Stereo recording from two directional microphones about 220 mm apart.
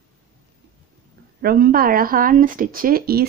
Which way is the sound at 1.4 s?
40° right (ahead or behind).